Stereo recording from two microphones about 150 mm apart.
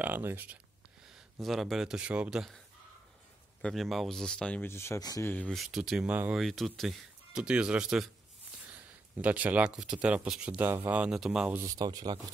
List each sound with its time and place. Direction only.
0.0 s speech: 15° right (ahead or behind)
1.4 s speech: centre (ahead or behind)
3.6 s speech: centre (ahead or behind); by 5.3 s 20° left (ahead or behind)
5.3 s speech: 5° left (ahead or behind)
6.4 s speech: centre (ahead or behind)
11.6 s speech: 25° right (ahead or behind)